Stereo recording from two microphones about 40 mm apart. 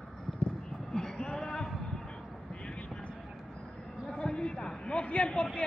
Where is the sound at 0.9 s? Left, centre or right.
Centre.